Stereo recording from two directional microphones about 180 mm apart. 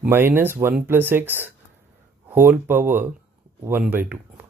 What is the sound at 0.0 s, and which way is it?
Speech, 10° right (ahead or behind).